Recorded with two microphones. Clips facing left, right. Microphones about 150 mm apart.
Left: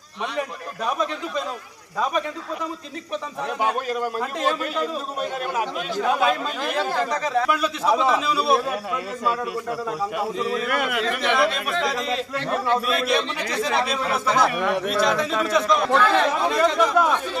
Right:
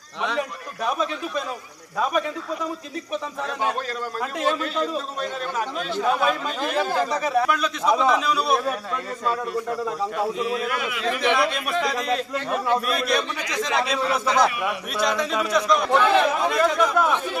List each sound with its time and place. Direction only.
3.6 s a man's voice: 15° left (ahead or behind)
6.8 s speech: 10° right (ahead or behind)
7.4 s a man's voice: 5° left (ahead or behind)
10.7 s a man's voice: 60° left (ahead or behind)
11.8 s a man's voice: centre (ahead or behind)
15.9 s speech: 15° right (ahead or behind)
16.4 s a man's voice: centre (ahead or behind)